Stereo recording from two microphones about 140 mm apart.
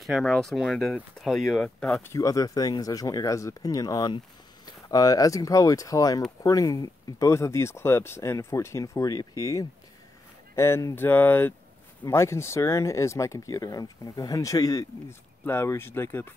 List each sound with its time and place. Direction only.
0.0 s speech: centre (ahead or behind)
2.0 s speech: 25° left (ahead or behind)